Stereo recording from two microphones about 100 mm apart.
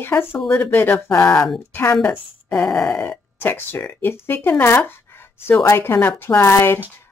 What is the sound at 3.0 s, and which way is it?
A woman's voice, 20° left (ahead or behind).